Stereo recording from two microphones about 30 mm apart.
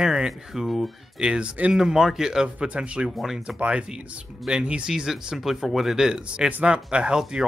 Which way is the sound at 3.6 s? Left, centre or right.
Right.